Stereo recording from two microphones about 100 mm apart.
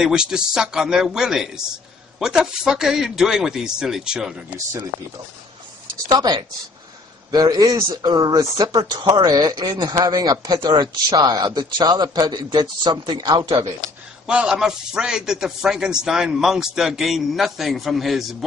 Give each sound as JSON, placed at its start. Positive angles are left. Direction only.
{"t": 0.0, "sound": "a man's voice", "side_deg": -10}
{"t": 6.0, "sound": "speech", "side_deg": -45}
{"t": 14.2, "sound": "a man's voice", "side_deg": -10}